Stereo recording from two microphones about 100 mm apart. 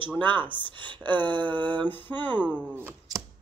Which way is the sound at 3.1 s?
40° right (ahead or behind).